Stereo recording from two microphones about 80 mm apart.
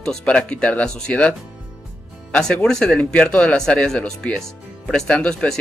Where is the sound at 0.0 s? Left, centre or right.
Centre.